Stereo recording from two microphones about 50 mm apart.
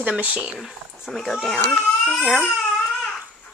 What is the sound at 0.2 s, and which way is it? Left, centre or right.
Speech, right.